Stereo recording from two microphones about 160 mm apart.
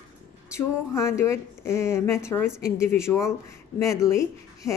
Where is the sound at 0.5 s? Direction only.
15° left (ahead or behind).